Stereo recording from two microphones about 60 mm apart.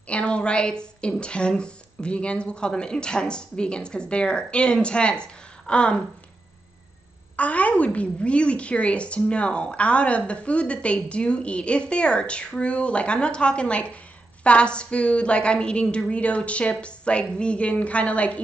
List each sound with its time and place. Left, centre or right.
0.1 s speech: centre
7.3 s a woman's voice: left